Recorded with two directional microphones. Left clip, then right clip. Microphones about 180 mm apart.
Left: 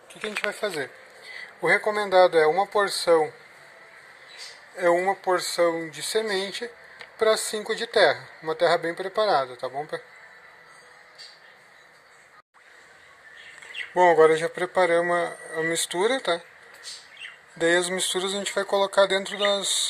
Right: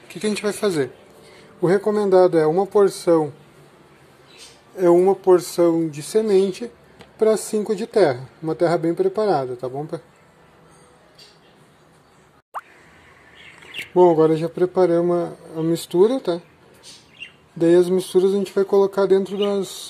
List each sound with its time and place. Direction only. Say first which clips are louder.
0.2 s speech: right 6 dB; centre (ahead or behind)
1.9 s speech: right 4 dB; 5° right (ahead or behind)
4.7 s speech: right 6 dB; centre (ahead or behind)
5.2 s speech: right 8 dB; 15° left (ahead or behind)
5.6 s speech: right 5 dB; centre (ahead or behind)
13.9 s speech: right 2 dB; centre (ahead or behind)
17.6 s speech: right 6 dB; centre (ahead or behind)